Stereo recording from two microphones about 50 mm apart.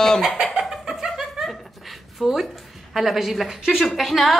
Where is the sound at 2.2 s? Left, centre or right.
Centre.